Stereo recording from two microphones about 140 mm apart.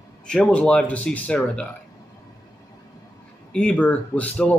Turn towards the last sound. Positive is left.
turn(degrees=10)  # may be behind; listen again after turning